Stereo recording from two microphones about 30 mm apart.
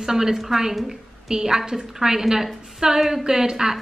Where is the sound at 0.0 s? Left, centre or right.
Centre.